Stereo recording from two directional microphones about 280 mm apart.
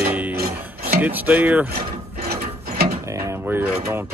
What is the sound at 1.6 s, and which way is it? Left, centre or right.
Mechanisms, right.